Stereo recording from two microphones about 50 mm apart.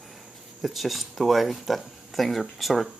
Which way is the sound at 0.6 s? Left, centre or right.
Centre.